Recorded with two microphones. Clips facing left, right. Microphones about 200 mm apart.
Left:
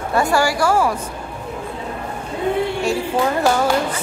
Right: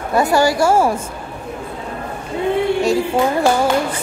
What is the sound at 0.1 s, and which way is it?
Speech, 20° right (ahead or behind).